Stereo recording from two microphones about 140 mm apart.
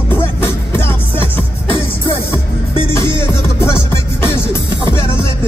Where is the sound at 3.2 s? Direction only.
20° left (ahead or behind).